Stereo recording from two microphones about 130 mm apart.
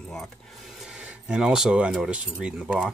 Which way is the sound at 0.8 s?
5° right (ahead or behind).